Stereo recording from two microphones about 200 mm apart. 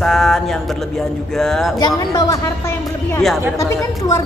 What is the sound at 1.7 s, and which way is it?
A woman's voice, 20° left (ahead or behind).